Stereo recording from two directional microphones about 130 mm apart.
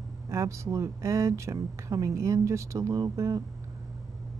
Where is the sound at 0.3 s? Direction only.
25° right (ahead or behind).